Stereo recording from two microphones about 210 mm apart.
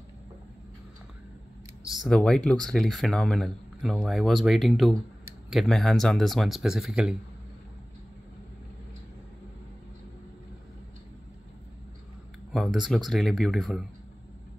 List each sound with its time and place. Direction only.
1.9 s speech: centre (ahead or behind)
12.5 s speech: centre (ahead or behind)